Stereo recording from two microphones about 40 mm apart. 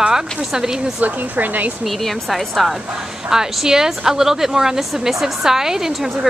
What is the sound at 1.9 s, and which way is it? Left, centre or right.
Speech, centre.